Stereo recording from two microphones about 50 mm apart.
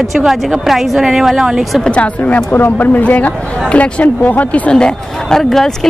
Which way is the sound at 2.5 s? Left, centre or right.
Left.